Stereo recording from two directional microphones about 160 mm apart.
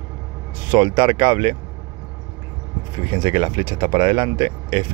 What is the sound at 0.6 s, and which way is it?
Speech, 30° right (ahead or behind).